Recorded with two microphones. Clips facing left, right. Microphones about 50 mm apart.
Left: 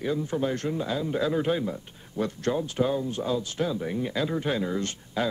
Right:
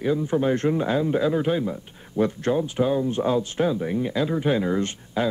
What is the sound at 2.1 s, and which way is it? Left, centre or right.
Speech, right.